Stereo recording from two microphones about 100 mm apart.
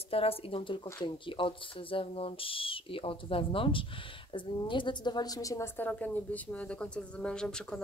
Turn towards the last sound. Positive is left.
turn(degrees=5)  # may be behind; listen again after turning